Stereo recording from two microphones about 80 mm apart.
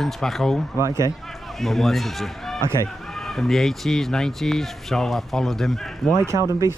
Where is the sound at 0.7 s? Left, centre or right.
Right.